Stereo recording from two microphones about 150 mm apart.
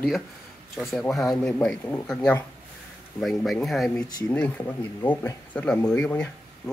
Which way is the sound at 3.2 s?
Centre (ahead or behind).